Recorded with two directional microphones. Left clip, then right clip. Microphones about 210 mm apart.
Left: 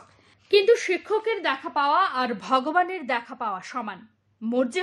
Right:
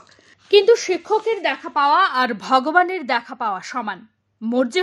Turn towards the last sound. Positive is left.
turn(degrees=-25)  # may be behind; listen again after turning